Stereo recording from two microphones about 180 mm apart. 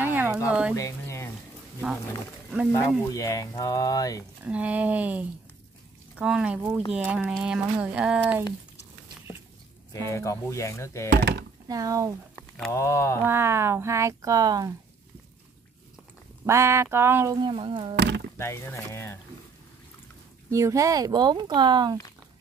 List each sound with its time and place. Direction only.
0.0 s a sound: 10° right (ahead or behind)
0.7 s a sound: 15° left (ahead or behind)
3.1 s speech: 20° left (ahead or behind)
4.5 s speech: 5° right (ahead or behind)
9.9 s speech: 15° left (ahead or behind)
11.1 s speech: 65° right (ahead or behind)
11.6 s speech: 20° right (ahead or behind)
12.7 s speech: 15° left (ahead or behind)
13.2 s speech: 15° right (ahead or behind)
16.4 s speech: 15° right (ahead or behind)
17.9 s speech: 70° right (ahead or behind)
18.4 s speech: 15° left (ahead or behind)
20.4 s speech: 15° right (ahead or behind)